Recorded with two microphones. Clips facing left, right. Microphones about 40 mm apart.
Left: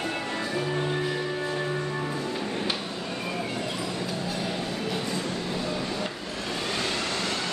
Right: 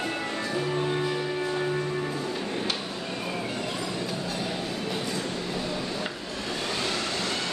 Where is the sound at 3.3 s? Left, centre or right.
Centre.